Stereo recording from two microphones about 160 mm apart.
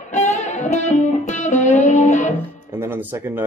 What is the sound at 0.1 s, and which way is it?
Music, 50° left (ahead or behind).